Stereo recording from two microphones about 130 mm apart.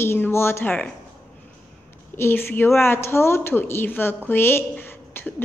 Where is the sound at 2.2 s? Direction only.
20° left (ahead or behind).